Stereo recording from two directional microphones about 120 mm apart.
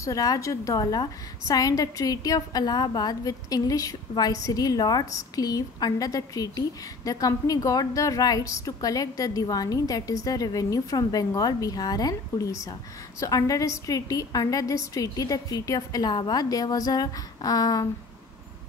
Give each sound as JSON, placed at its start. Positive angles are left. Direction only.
{"t": 0.0, "sound": "a woman's voice", "side_deg": 30}